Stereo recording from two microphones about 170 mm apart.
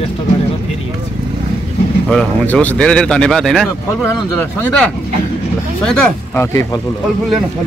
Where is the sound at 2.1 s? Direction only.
5° left (ahead or behind).